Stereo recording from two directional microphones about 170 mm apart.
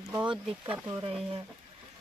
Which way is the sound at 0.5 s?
5° right (ahead or behind).